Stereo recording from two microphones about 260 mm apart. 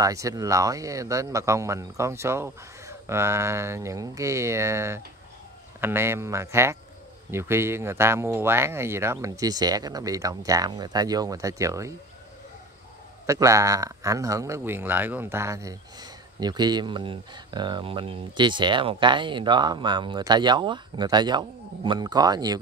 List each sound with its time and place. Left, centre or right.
0.0 s speech: centre
13.3 s speech: centre